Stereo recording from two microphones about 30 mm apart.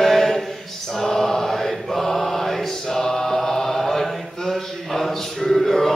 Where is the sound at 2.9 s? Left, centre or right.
Centre.